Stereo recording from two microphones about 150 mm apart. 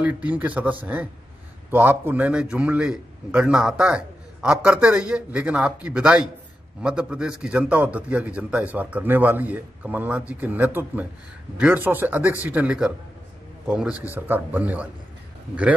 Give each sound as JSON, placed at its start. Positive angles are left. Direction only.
{"t": 0.0, "sound": "a man's voice", "side_deg": -10}